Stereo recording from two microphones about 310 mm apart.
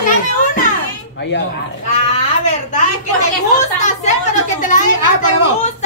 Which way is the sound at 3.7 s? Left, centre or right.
Left.